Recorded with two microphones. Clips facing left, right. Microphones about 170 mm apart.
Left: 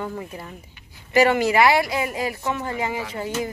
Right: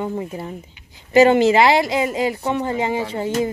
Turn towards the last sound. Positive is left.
turn(degrees=-25)  # may be behind; listen again after turning